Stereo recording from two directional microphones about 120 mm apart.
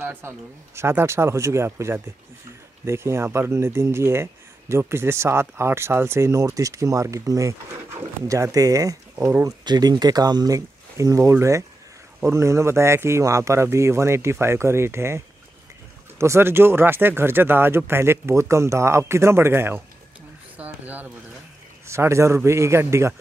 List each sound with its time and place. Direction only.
0.0 s speech: 20° right (ahead or behind)
20.5 s a sound: 15° right (ahead or behind)
21.8 s speech: 25° right (ahead or behind)